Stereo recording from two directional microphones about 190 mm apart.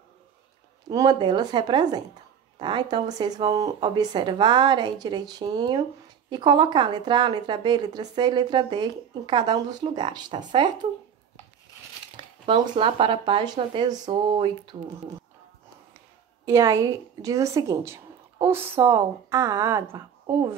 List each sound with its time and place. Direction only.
0.8 s a woman's voice: 20° right (ahead or behind)
12.4 s a woman's voice: 25° right (ahead or behind)
16.4 s a woman's voice: 15° right (ahead or behind)